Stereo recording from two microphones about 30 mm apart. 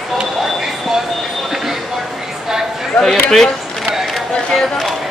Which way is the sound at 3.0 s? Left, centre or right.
Centre.